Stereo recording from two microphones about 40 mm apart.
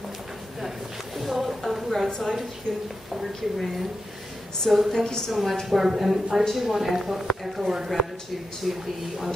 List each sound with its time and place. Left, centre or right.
0.6 s a sound: centre
2.0 s a woman's voice: centre
3.2 s speech: centre
4.9 s a woman's voice: centre
5.3 s speech: centre